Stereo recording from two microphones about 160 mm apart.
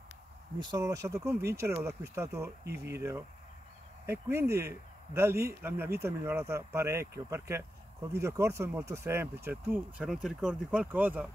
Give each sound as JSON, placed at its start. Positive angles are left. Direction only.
{"t": 0.6, "sound": "speech", "side_deg": -25}
{"t": 2.6, "sound": "speech", "side_deg": -90}
{"t": 2.9, "sound": "speech", "side_deg": -15}